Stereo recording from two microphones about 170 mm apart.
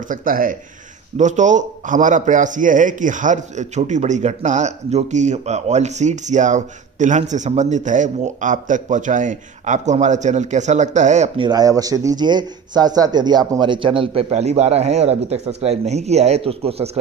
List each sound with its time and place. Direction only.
0.1 s a man's voice: 55° right (ahead or behind)
11.4 s speech: 20° right (ahead or behind)